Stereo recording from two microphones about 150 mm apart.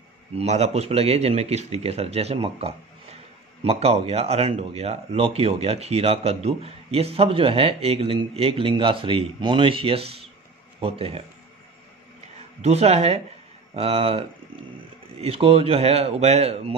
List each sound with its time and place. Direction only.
0.4 s speech: 45° right (ahead or behind)
12.6 s speech: 45° right (ahead or behind)